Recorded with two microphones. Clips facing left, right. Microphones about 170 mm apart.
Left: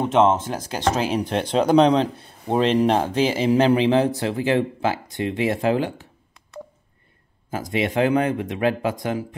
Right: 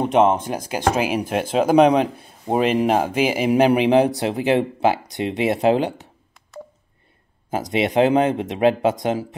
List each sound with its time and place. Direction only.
0.0 s speech: 15° right (ahead or behind)
7.5 s speech: 20° right (ahead or behind)